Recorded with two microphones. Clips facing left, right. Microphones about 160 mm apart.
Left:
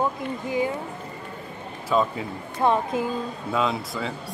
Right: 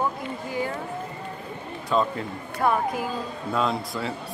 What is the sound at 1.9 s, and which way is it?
Speech, 5° left (ahead or behind).